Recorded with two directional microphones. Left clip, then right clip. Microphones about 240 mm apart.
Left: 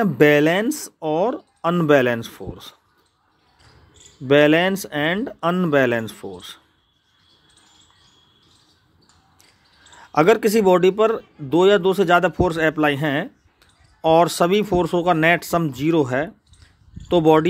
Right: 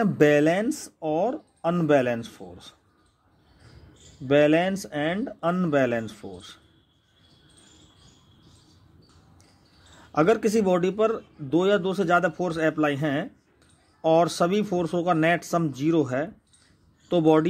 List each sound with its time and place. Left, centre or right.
0.0 s speech: left
4.3 s speech: left
10.1 s speech: left